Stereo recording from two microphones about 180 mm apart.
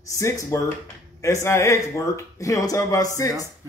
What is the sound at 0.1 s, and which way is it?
Speech, 15° left (ahead or behind).